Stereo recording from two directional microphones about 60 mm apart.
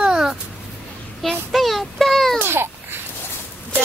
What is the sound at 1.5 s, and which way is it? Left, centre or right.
Speech, centre.